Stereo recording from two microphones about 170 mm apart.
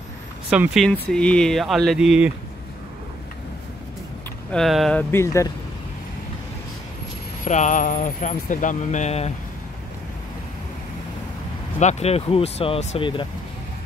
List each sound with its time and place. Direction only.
0.5 s speech: 5° right (ahead or behind)
0.8 s speech: 5° left (ahead or behind)
4.5 s speech: centre (ahead or behind)
5.1 s speech: 15° left (ahead or behind)
7.4 s speech: 45° left (ahead or behind)
11.8 s speech: 40° left (ahead or behind)